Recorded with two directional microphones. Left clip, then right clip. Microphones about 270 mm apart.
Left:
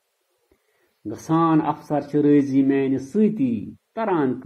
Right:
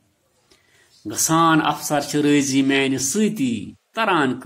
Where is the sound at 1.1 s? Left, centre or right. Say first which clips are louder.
Right 4 dB; right.